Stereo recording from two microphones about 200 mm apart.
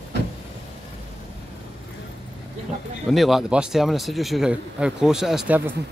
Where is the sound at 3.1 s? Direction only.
Centre (ahead or behind).